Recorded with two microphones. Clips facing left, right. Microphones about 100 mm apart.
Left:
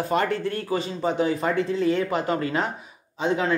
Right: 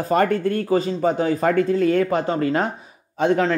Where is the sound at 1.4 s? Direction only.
50° right (ahead or behind).